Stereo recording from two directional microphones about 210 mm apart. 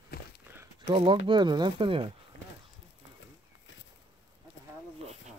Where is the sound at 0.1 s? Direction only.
50° left (ahead or behind).